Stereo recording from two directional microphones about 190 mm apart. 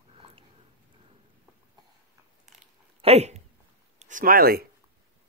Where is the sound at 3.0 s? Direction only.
35° right (ahead or behind).